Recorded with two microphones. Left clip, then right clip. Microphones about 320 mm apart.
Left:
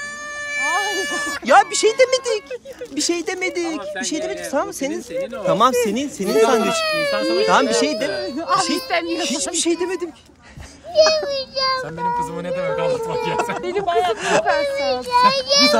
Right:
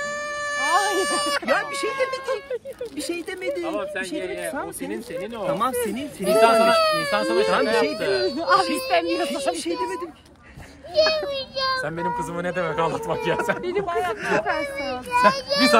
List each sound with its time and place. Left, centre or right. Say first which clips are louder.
0.7 s a sound: right 1 dB; right
1.5 s speech: left 9 dB; centre
9.2 s speech: left 3 dB; centre
11.0 s a sound: left 5 dB; centre
12.4 s speech: left 2 dB; centre
13.7 s speech: left 5 dB; left